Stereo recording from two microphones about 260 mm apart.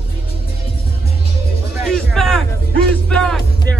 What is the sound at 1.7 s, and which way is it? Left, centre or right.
Music, centre.